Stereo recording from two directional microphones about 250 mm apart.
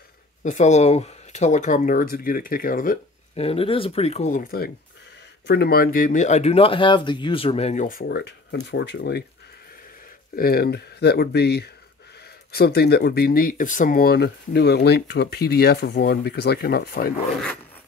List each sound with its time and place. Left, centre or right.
0.4 s speech: left
10.3 s speech: left